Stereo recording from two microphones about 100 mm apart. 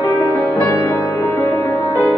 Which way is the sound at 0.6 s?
30° left (ahead or behind).